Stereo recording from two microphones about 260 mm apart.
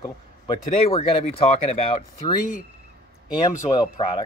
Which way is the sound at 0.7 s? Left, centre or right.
Left.